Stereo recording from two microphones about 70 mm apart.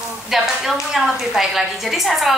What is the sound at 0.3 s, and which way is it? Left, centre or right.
A woman's voice, centre.